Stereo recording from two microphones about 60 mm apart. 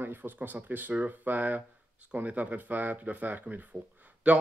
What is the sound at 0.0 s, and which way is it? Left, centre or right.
Speech, right.